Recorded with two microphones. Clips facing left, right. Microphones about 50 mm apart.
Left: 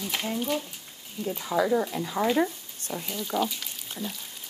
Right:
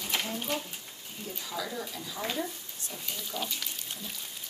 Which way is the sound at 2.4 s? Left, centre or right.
Left.